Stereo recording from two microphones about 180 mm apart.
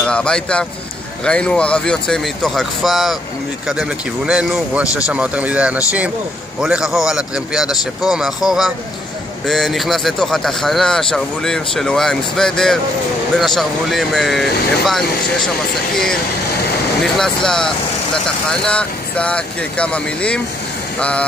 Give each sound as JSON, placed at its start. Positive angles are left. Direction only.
{"t": 0.0, "sound": "speech", "side_deg": 5}